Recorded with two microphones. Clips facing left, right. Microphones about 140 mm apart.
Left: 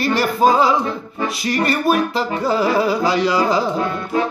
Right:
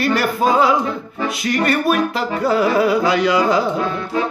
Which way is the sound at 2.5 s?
30° left (ahead or behind).